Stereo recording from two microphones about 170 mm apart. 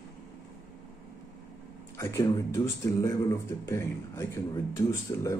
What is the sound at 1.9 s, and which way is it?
Speech, 15° left (ahead or behind).